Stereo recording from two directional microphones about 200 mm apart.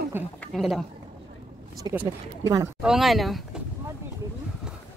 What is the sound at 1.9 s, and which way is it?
Speech, 10° right (ahead or behind).